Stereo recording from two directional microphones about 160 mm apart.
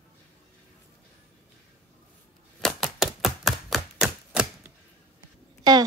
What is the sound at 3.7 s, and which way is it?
Chopping, 5° right (ahead or behind).